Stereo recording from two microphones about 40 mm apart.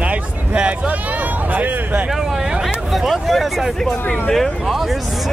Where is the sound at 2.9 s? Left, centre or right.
Centre.